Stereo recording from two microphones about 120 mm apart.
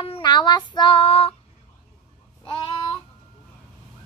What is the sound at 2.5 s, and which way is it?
Child singing, 45° left (ahead or behind).